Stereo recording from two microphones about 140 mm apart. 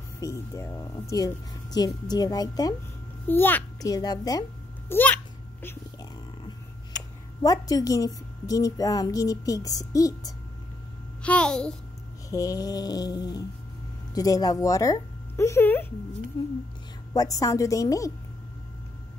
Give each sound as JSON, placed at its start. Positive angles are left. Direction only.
{"t": 0.2, "sound": "a woman's voice", "side_deg": 20}
{"t": 3.3, "sound": "a child's voice", "side_deg": 15}
{"t": 3.8, "sound": "a woman's voice", "side_deg": 30}
{"t": 4.8, "sound": "a sound", "side_deg": 15}
{"t": 7.4, "sound": "a woman's voice", "side_deg": 25}
{"t": 11.2, "sound": "a child's voice", "side_deg": 10}
{"t": 12.3, "sound": "a woman's voice", "side_deg": 25}
{"t": 16.3, "sound": "speech", "side_deg": 35}
{"t": 17.1, "sound": "a woman's voice", "side_deg": 25}